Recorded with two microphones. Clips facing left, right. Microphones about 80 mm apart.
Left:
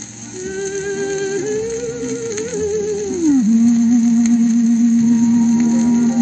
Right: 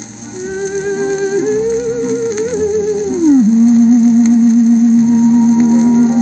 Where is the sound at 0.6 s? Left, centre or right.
Centre.